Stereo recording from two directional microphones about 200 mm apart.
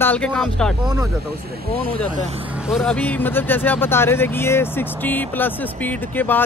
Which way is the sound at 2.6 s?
Centre (ahead or behind).